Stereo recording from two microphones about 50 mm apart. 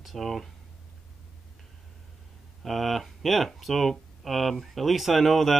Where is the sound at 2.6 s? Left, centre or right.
Centre.